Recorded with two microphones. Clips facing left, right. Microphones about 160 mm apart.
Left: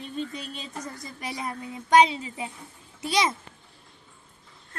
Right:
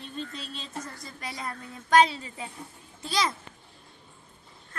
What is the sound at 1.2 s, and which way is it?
A woman's voice, 20° left (ahead or behind).